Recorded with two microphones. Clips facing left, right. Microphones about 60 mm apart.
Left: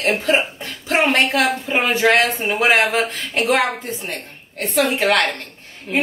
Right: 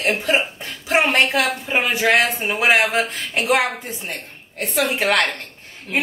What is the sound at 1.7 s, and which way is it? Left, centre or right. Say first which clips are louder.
Speech: left 1 dB; centre.